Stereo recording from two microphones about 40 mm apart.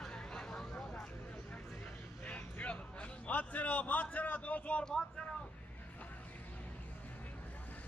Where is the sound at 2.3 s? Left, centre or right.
Left.